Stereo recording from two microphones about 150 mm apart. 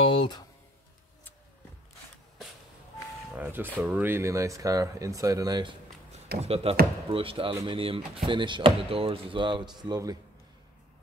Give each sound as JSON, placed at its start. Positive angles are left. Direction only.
{"t": 0.0, "sound": "speech", "side_deg": 35}
{"t": 3.3, "sound": "speech", "side_deg": -15}
{"t": 6.4, "sound": "speech", "side_deg": -40}